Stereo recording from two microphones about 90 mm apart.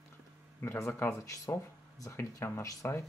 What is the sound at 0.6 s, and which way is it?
Speech, 30° left (ahead or behind).